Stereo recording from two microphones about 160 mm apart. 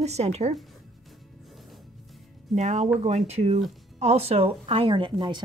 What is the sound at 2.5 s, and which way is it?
A woman's voice, 45° right (ahead or behind).